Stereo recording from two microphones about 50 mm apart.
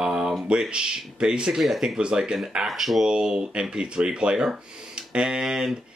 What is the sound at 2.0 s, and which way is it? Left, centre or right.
Speech, centre.